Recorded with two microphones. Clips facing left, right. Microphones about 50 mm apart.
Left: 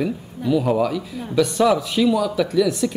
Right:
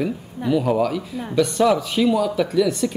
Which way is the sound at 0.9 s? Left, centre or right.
Centre.